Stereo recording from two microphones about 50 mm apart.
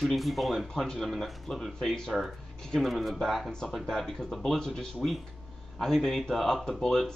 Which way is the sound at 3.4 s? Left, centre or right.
Centre.